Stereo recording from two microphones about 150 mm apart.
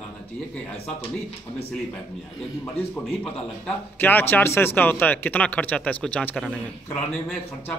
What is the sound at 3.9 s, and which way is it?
Speech, 15° left (ahead or behind).